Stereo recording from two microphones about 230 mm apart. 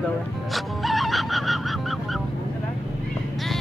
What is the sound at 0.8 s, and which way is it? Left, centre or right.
Music, centre.